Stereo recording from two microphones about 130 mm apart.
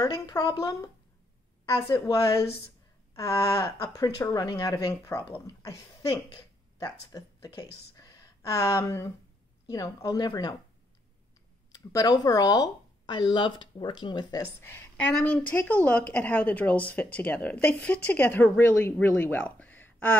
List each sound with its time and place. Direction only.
0.0 s speech: 30° left (ahead or behind)
7.9 s a sound: 30° left (ahead or behind)
8.4 s speech: 20° left (ahead or behind)
11.7 s speech: 30° left (ahead or behind)
14.4 s speech: 20° left (ahead or behind)